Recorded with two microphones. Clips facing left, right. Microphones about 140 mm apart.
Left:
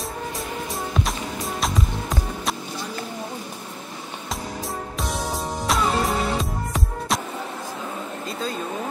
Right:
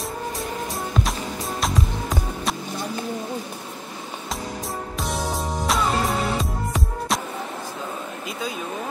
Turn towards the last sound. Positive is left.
turn(degrees=0)  # may be behind; listen again after turning